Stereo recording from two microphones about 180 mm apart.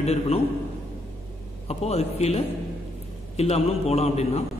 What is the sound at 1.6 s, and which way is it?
A man's voice, 35° left (ahead or behind).